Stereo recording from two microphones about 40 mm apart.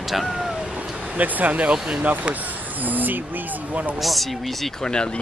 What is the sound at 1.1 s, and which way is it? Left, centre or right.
Speech, right.